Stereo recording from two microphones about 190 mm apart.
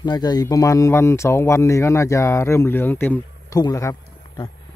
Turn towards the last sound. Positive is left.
turn(degrees=20)  # may be behind; listen again after turning